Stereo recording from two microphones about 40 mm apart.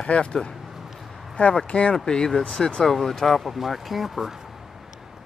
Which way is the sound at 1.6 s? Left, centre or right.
Left.